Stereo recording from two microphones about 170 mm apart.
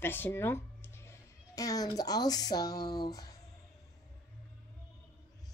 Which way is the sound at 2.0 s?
20° left (ahead or behind).